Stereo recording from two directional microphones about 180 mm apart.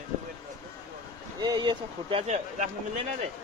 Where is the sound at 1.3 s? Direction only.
25° right (ahead or behind).